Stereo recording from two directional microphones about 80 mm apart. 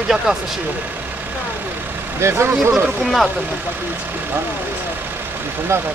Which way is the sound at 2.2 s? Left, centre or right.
Right.